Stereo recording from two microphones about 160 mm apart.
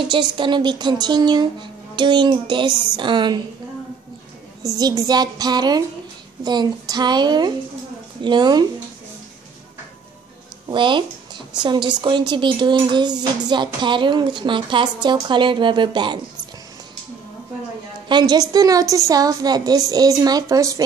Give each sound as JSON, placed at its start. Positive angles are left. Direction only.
{"t": 0.1, "sound": "speech", "side_deg": -30}
{"t": 4.6, "sound": "speech", "side_deg": -20}
{"t": 10.7, "sound": "speech", "side_deg": -30}
{"t": 18.0, "sound": "speech", "side_deg": -25}